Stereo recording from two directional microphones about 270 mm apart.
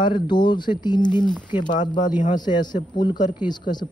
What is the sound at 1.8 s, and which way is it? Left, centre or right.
Speech, centre.